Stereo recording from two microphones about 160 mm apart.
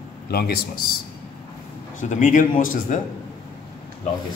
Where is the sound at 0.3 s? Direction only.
75° left (ahead or behind).